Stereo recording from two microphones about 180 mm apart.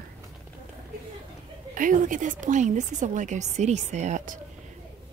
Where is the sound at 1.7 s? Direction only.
45° right (ahead or behind).